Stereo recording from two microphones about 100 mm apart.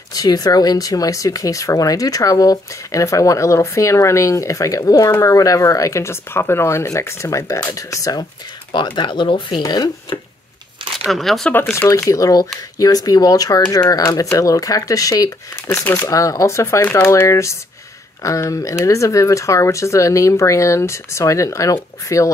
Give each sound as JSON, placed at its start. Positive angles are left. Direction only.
{"t": 0.1, "sound": "speech", "side_deg": 40}
{"t": 8.7, "sound": "speech", "side_deg": 50}
{"t": 11.1, "sound": "speech", "side_deg": 0}
{"t": 11.7, "sound": "speech", "side_deg": 30}
{"t": 15.6, "sound": "speech", "side_deg": 20}
{"t": 16.1, "sound": "speech", "side_deg": 35}